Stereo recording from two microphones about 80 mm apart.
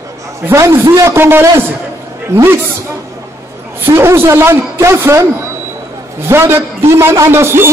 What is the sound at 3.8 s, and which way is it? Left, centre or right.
A man's voice, right.